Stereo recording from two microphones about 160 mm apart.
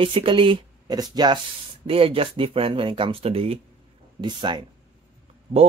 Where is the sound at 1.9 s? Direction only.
35° right (ahead or behind).